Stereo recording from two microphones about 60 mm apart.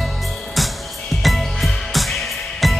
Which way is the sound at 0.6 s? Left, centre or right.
Centre.